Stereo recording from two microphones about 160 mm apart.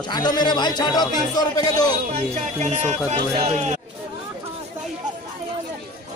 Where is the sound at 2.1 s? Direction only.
45° right (ahead or behind).